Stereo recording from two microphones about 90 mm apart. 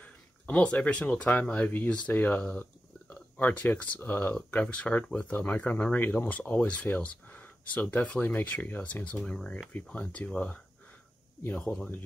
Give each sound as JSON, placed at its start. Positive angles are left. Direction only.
{"t": 0.0, "sound": "speech", "side_deg": 15}